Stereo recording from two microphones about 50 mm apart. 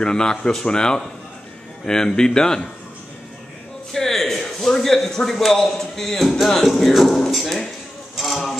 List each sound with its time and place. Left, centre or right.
0.0 s speech: centre
3.9 s a man's voice: centre